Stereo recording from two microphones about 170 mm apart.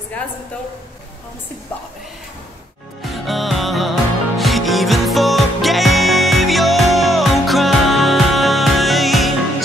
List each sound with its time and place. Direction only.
3.0 s music: centre (ahead or behind)